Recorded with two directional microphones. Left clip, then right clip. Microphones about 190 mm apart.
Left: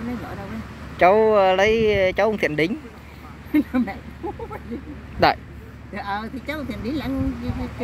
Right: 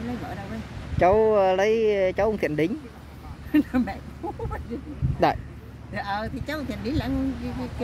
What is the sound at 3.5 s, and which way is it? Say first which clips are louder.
Speech: left 2 dB; 30° right (ahead or behind).